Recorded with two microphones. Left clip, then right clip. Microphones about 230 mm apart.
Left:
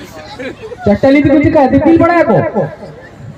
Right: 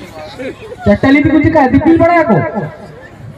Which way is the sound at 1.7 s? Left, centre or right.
Right.